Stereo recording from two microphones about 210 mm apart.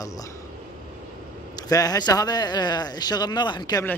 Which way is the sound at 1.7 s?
15° left (ahead or behind).